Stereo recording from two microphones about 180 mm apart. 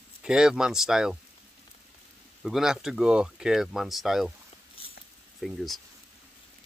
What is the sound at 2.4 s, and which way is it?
Speech, centre (ahead or behind).